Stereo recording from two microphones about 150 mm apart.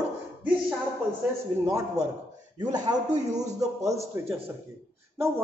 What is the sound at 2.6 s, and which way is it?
Speech, 25° right (ahead or behind).